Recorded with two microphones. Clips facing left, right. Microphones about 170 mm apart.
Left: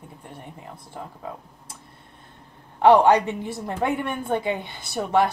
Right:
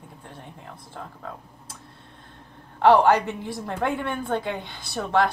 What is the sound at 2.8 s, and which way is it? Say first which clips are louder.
Speech: left 2 dB; 15° left (ahead or behind).